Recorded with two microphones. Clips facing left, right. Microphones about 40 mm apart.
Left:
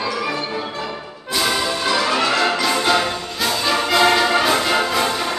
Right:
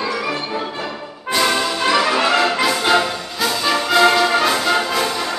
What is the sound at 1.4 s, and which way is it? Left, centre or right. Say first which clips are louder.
Music: right 2 dB; centre.